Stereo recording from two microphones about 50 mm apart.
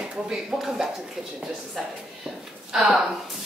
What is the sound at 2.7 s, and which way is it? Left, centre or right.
Speech, centre.